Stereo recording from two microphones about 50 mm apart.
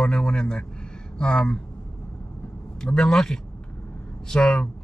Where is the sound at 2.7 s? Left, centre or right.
Centre.